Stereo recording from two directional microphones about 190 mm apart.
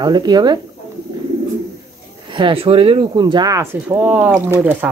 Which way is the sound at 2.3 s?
25° right (ahead or behind).